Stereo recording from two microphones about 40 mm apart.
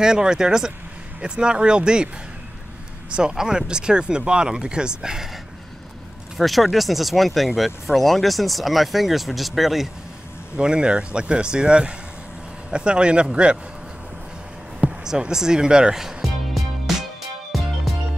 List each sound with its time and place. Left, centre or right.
0.0 s speech: centre
3.1 s speech: centre
6.3 s speech: centre
10.5 s speech: right
15.0 s speech: centre
16.0 s music: centre